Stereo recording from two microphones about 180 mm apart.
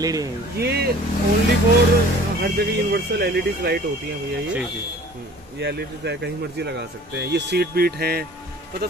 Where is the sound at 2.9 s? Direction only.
60° right (ahead or behind).